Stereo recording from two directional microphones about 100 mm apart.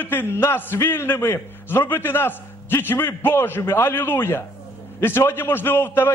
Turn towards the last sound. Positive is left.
turn(degrees=25)  # may be behind; listen again after turning